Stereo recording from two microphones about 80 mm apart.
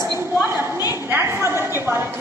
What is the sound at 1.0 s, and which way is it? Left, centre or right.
A woman's voice, right.